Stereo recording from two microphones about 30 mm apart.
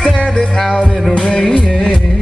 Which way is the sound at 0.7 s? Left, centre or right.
Left.